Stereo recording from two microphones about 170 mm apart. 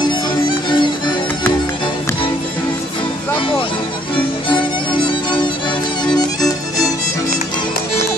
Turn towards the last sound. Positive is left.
turn(degrees=25)  # may be behind; listen again after turning